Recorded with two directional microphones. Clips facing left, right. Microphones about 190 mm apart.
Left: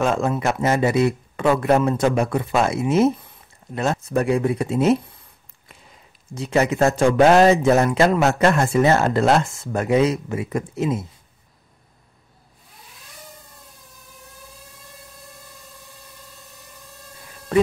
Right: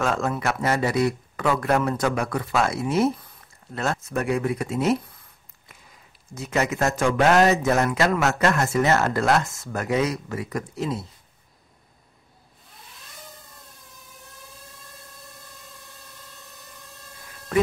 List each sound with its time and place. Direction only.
0.0 s speech: 20° left (ahead or behind)
6.3 s speech: 30° left (ahead or behind)